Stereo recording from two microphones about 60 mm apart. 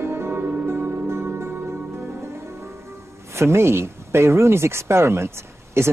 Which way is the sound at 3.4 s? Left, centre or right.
Right.